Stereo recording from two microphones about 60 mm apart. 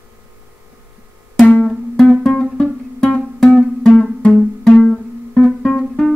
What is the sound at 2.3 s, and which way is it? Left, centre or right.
Music, centre.